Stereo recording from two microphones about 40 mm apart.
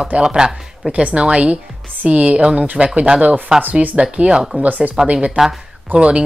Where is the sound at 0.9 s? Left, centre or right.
Right.